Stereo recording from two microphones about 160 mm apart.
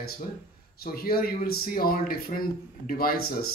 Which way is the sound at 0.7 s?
70° left (ahead or behind).